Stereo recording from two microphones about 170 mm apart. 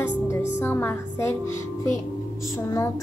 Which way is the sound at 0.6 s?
15° left (ahead or behind).